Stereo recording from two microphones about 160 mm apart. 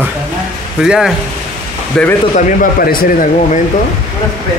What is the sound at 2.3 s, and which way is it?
Speech, 65° left (ahead or behind).